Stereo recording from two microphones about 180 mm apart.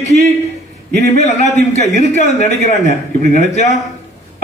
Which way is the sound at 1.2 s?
40° left (ahead or behind).